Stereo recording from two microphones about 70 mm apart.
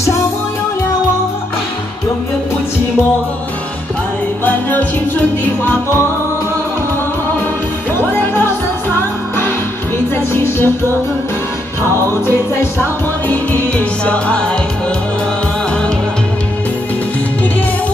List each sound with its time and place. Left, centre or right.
4.5 s music: left
8.1 s music: left
10.1 s music: left
13.3 s music: left